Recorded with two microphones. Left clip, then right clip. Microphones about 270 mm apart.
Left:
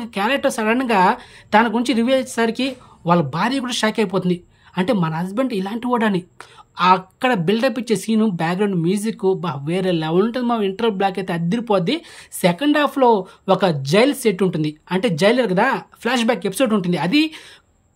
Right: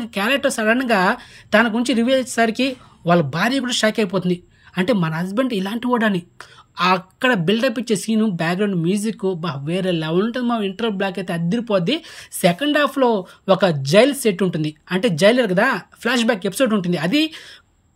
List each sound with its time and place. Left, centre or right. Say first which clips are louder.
0.0 s speech: even; centre